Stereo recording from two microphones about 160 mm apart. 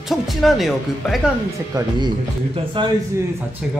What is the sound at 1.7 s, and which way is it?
A man's voice, 25° right (ahead or behind).